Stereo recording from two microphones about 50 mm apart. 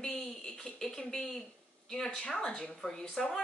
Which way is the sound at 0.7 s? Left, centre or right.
Centre.